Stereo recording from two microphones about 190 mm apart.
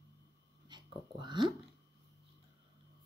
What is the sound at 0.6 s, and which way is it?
Speech, 25° right (ahead or behind).